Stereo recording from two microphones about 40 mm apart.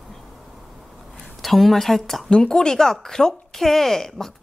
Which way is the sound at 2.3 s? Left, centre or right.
Centre.